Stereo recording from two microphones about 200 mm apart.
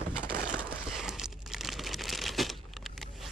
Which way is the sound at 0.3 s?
50° right (ahead or behind).